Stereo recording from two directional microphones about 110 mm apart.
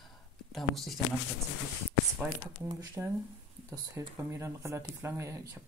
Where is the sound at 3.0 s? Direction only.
15° right (ahead or behind).